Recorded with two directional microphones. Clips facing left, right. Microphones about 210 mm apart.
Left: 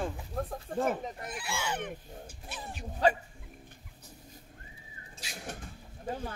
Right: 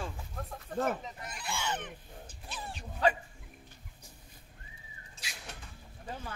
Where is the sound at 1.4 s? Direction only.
5° left (ahead or behind).